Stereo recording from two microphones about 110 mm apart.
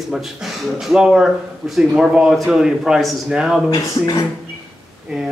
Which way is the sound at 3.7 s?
35° left (ahead or behind).